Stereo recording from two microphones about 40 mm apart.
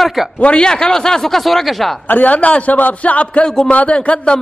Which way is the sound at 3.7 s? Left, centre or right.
Left.